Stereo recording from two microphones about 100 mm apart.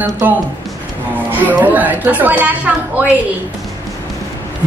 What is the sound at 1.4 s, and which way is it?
Speech, 15° right (ahead or behind).